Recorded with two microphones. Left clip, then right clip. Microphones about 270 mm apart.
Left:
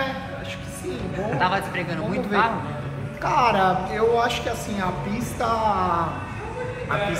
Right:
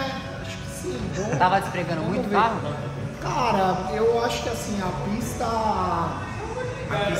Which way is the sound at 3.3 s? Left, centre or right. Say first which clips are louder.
Left 3 dB; centre.